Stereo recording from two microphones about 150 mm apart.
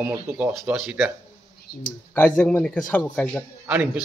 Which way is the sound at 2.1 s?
10° left (ahead or behind).